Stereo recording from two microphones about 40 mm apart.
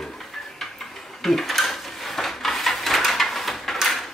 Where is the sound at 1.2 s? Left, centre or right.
Centre.